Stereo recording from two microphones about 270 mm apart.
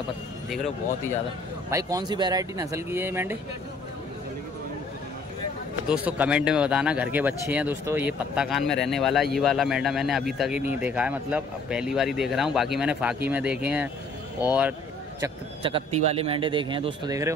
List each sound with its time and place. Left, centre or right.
1.7 s a man's voice: centre
5.9 s a man's voice: centre